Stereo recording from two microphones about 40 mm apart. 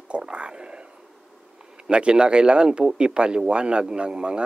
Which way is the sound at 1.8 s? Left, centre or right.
Right.